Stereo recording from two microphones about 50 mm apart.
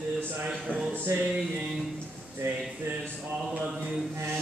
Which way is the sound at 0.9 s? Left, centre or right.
Right.